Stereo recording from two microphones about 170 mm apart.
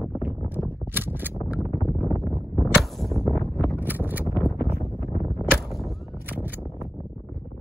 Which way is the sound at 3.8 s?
10° right (ahead or behind).